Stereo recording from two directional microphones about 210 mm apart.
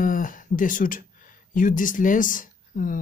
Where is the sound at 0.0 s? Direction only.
40° left (ahead or behind).